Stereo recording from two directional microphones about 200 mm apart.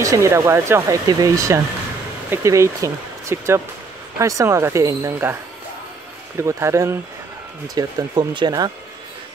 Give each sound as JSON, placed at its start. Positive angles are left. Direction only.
{"t": 0.0, "sound": "speech", "side_deg": -15}